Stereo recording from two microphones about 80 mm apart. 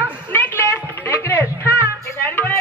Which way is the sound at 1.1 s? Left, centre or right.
Left.